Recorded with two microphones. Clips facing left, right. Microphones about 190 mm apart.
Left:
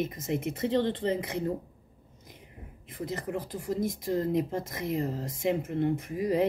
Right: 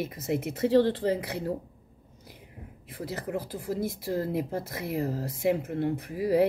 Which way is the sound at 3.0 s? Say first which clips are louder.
Even; 5° right (ahead or behind).